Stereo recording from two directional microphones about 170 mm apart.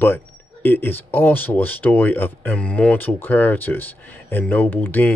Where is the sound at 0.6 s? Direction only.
10° left (ahead or behind).